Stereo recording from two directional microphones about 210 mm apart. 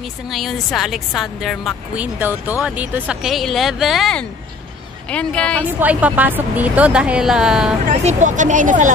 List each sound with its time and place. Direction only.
0.3 s a woman's voice: centre (ahead or behind)
5.8 s speech: 5° right (ahead or behind)
7.9 s speech: 35° right (ahead or behind)